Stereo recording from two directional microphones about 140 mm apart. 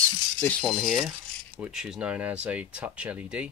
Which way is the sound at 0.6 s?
Centre (ahead or behind).